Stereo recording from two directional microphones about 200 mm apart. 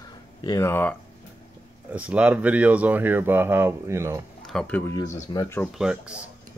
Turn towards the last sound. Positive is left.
turn(degrees=-5)  # may be behind; listen again after turning